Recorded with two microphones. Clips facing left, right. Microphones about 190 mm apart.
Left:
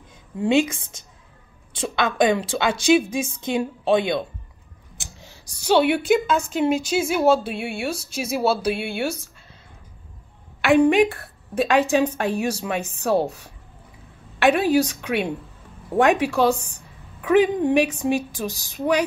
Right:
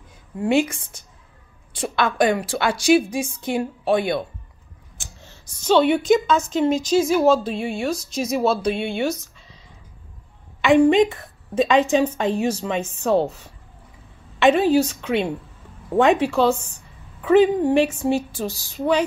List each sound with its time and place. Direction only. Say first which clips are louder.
0.4 s a woman's voice: even; 20° left (ahead or behind)
10.6 s a woman's voice: right 1 dB; 10° left (ahead or behind)